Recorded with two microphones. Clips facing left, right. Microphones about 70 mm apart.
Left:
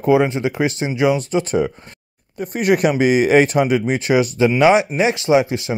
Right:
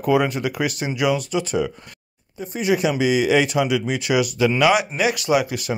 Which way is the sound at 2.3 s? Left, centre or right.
Left.